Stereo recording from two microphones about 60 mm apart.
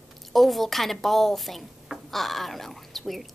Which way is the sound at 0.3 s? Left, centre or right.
Centre.